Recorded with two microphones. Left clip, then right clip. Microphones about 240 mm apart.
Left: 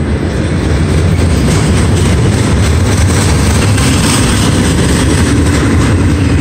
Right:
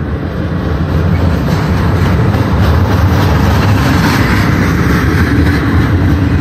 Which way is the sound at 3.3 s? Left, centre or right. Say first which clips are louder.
Even; left.